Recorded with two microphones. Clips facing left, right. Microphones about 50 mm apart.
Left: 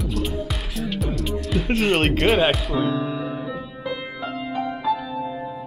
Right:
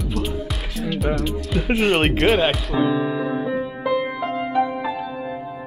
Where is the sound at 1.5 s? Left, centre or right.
Centre.